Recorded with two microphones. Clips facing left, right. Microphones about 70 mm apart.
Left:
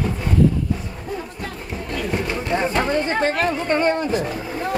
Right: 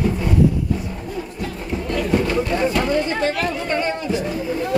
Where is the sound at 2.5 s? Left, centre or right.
Left.